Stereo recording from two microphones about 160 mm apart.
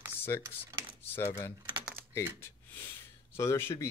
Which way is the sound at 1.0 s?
15° left (ahead or behind).